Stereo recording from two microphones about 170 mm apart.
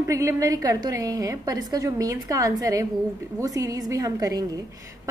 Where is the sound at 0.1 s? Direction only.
20° right (ahead or behind).